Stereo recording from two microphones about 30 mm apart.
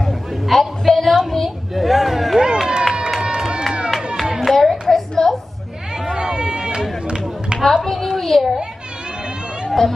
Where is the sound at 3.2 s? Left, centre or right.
Right.